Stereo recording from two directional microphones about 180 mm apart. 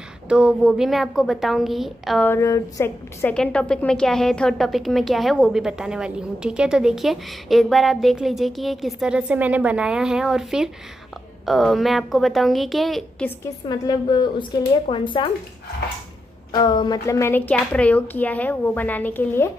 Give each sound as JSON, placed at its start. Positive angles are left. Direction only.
{"t": 0.3, "sound": "a woman's voice", "side_deg": -5}
{"t": 2.2, "sound": "a woman's voice", "side_deg": 15}
{"t": 13.4, "sound": "a woman's voice", "side_deg": 20}
{"t": 16.5, "sound": "speech", "side_deg": 25}